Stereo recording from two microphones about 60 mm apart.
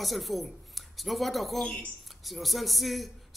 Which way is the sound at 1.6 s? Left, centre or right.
Centre.